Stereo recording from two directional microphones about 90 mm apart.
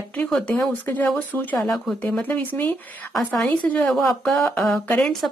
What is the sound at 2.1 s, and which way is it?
A woman's voice, 20° left (ahead or behind).